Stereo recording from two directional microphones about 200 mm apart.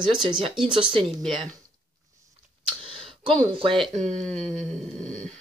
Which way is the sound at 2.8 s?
25° right (ahead or behind).